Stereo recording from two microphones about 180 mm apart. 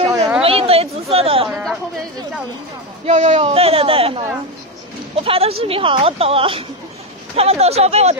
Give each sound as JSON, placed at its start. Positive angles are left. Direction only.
{"t": 0.0, "sound": "a sound", "side_deg": -30}
{"t": 3.1, "sound": "speech", "side_deg": -40}
{"t": 5.2, "sound": "speech", "side_deg": -30}